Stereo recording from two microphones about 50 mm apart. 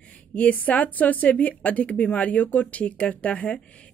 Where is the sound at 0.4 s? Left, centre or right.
Left.